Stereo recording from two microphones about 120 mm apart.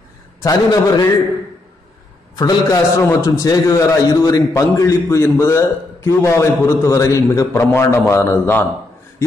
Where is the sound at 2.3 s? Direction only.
30° left (ahead or behind).